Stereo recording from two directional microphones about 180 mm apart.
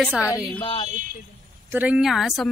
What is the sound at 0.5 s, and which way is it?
Speech, 25° left (ahead or behind).